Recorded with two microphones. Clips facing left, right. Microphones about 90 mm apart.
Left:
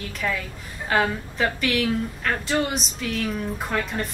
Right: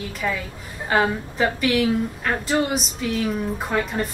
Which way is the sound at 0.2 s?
10° right (ahead or behind).